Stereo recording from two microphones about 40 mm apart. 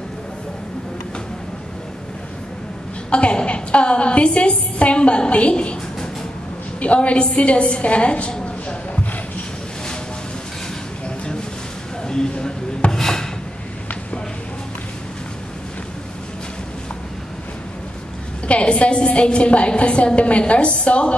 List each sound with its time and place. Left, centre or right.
3.1 s a woman's voice: left
6.8 s a woman's voice: left
11.1 s a sound: left
18.5 s a woman's voice: left